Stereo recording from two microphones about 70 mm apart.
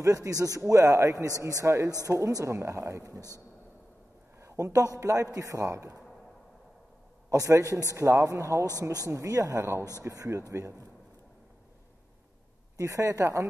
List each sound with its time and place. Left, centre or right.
0.0 s speech: right
4.4 s a sound: right
4.9 s speech: right
7.2 s speech: right
9.6 s speech: right
12.7 s speech: right